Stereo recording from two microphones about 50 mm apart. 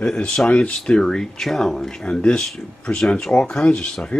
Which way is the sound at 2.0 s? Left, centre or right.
Centre.